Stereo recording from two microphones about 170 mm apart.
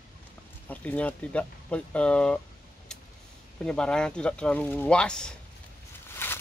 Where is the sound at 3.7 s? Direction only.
5° left (ahead or behind).